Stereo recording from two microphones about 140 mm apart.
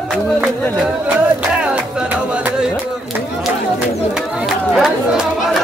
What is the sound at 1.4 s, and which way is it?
Music, 10° right (ahead or behind).